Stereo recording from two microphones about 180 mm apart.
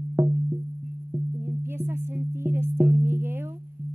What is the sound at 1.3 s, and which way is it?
Sine wave, 15° right (ahead or behind).